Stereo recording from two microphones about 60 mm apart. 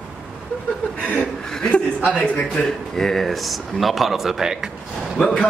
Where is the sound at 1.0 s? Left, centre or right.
Left.